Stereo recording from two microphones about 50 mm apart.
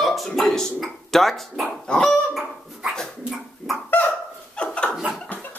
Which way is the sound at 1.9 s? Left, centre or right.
Centre.